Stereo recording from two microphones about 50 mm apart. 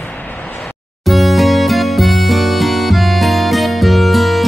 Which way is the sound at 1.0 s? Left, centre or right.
Centre.